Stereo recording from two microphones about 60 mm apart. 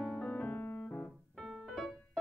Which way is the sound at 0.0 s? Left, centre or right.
Centre.